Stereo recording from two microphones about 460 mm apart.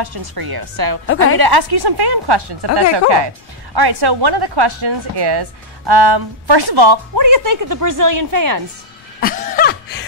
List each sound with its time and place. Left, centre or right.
0.0 s a woman's voice: right
1.0 s a woman's voice: left
1.4 s a woman's voice: right
9.2 s chuckle: centre